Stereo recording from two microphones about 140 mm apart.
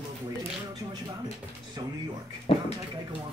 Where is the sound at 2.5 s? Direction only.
40° left (ahead or behind).